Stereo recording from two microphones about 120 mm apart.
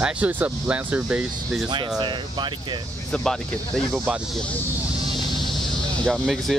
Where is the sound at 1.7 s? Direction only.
40° right (ahead or behind).